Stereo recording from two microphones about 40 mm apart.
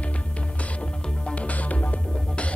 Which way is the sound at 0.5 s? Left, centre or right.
Left.